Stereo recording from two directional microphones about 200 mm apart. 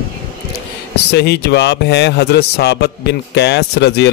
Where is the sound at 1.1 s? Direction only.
55° left (ahead or behind).